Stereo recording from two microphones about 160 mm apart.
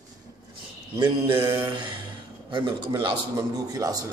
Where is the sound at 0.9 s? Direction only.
20° right (ahead or behind).